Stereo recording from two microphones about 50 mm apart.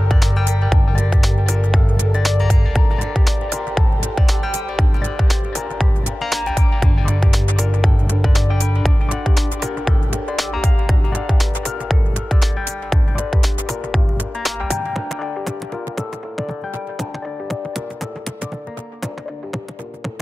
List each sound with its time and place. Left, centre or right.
0.1 s music: centre